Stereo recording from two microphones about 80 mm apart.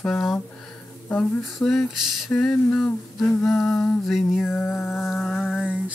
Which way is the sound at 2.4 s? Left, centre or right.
Centre.